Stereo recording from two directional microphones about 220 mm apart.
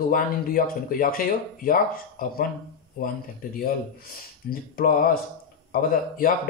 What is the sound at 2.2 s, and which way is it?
Speech, 40° left (ahead or behind).